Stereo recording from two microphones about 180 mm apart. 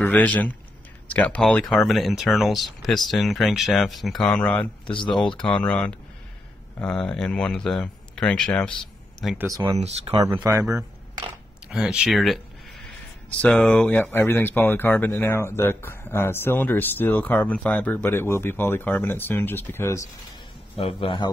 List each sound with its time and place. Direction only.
0.0 s speech: 5° left (ahead or behind)
4.8 s speech: 25° left (ahead or behind)
5.4 s speech: 5° left (ahead or behind)
9.5 s speech: 20° right (ahead or behind)
9.8 s speech: 35° right (ahead or behind)
10.2 s speech: 15° right (ahead or behind)
11.7 s speech: 5° right (ahead or behind)
13.4 s speech: 5° left (ahead or behind)
20.7 s a man's voice: 30° left (ahead or behind)